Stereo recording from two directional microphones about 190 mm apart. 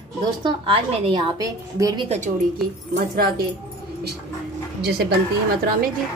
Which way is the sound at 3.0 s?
50° right (ahead or behind).